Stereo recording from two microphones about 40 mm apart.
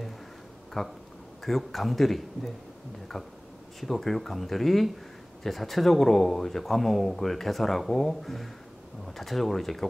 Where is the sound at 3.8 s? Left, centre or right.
Centre.